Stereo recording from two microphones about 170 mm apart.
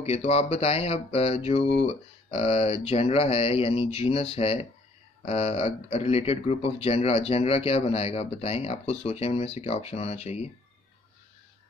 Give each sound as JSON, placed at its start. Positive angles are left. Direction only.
{"t": 0.0, "sound": "speech", "side_deg": 35}